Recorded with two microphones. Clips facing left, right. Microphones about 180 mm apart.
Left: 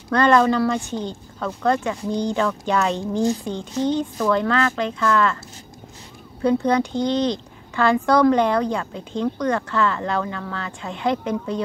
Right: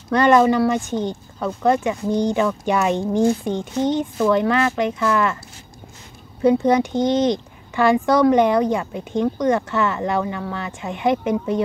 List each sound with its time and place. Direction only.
0.1 s speech: 15° right (ahead or behind)
6.4 s speech: 20° right (ahead or behind)